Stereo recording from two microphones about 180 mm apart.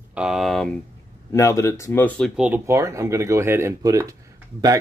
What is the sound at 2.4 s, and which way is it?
Speech, 10° right (ahead or behind).